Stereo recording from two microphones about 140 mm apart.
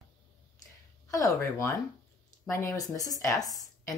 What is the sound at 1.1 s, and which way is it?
Speech, 25° left (ahead or behind).